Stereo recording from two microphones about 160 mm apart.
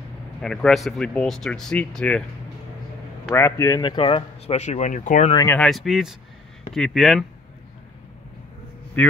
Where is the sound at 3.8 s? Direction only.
30° left (ahead or behind); by 5.3 s 50° left (ahead or behind).